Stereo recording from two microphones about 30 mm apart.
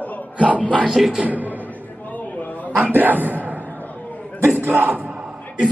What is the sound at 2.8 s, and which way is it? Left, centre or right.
Speech, right.